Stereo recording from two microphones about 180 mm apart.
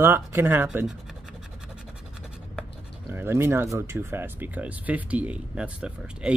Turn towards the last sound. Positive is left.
turn(degrees=-5)  # may be behind; listen again after turning